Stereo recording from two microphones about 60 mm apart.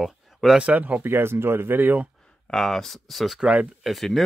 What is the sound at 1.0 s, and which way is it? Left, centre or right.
Speech, right.